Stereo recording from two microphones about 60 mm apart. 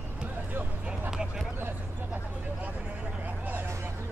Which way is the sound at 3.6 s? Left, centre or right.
Right.